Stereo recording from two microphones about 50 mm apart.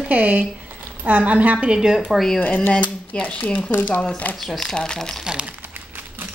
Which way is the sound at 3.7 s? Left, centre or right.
Left.